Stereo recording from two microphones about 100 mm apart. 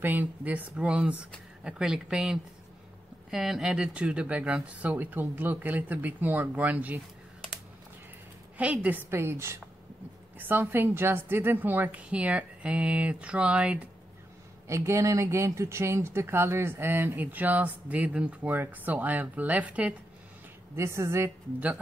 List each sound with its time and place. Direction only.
0.0 s speech: 15° right (ahead or behind)
8.5 s speech: 15° right (ahead or behind)
14.7 s speech: 30° right (ahead or behind); by 19.9 s 15° right (ahead or behind)
20.7 s speech: 25° right (ahead or behind)